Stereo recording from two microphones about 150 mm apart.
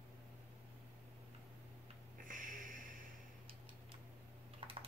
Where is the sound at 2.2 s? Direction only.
65° right (ahead or behind).